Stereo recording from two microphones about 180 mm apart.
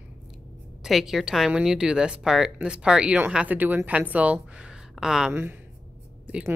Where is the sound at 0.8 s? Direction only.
Centre (ahead or behind).